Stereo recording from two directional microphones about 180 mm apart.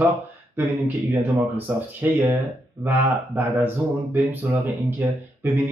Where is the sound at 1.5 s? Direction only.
10° right (ahead or behind).